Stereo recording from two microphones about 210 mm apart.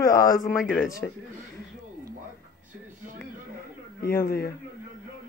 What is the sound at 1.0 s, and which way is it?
Speech, 5° left (ahead or behind).